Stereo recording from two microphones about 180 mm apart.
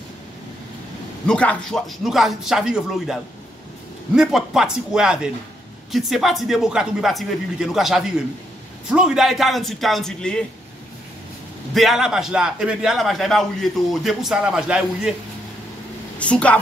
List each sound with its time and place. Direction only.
1.2 s a man's voice: 5° left (ahead or behind)
11.7 s a man's voice: centre (ahead or behind)
16.2 s a woman's voice: 5° left (ahead or behind)